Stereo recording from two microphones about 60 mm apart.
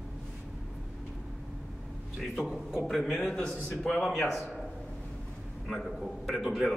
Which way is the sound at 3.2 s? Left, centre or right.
Centre.